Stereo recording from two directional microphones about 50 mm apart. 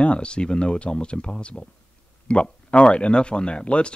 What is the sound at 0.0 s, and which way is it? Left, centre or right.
Speech, left.